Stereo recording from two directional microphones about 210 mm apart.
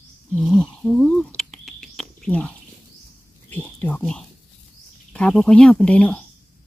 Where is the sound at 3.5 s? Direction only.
10° left (ahead or behind).